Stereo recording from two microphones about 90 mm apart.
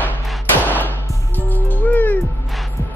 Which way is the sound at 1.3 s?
20° left (ahead or behind).